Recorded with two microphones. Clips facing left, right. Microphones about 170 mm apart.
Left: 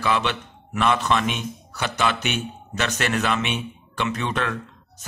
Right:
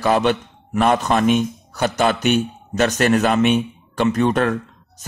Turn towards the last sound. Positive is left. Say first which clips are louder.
# right 8 dB
turn(degrees=-45)  # may be behind; listen again after turning